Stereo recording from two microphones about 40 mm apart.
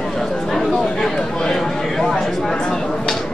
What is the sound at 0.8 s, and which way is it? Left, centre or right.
Speech, centre.